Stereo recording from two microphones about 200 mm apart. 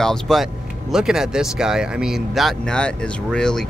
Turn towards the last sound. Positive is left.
turn(degrees=5)  # may be behind; listen again after turning